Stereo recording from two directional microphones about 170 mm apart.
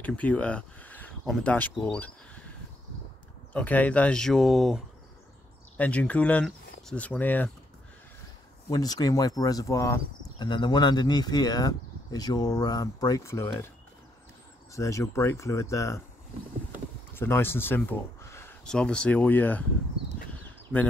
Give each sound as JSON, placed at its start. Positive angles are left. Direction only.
{"t": 0.0, "sound": "speech", "side_deg": 10}
{"t": 3.5, "sound": "speech", "side_deg": 10}
{"t": 8.6, "sound": "speech", "side_deg": 20}
{"t": 14.7, "sound": "speech", "side_deg": 20}
{"t": 17.1, "sound": "speech", "side_deg": 15}
{"t": 20.7, "sound": "speech", "side_deg": 0}